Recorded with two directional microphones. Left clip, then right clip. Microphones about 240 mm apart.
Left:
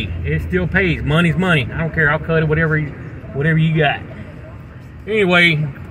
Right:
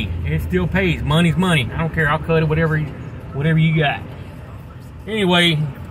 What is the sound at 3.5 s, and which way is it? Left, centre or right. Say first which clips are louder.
Speech: left 2 dB; centre.